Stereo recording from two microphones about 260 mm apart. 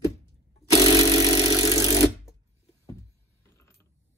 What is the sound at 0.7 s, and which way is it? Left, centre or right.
Jackhammer, left.